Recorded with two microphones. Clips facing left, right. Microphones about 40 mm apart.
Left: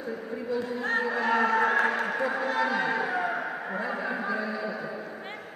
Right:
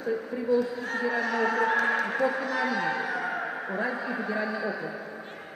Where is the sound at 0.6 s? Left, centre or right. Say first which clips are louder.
Even; left.